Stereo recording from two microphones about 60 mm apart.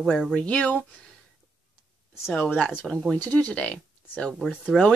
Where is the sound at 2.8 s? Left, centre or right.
Centre.